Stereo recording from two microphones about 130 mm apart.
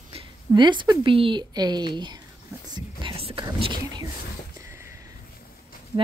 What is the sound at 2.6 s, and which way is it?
Whispering, 35° right (ahead or behind).